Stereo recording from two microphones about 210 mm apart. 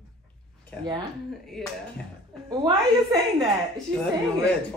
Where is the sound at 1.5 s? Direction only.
Centre (ahead or behind).